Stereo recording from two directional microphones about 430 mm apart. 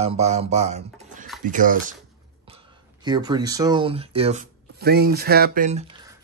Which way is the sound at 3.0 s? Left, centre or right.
Centre.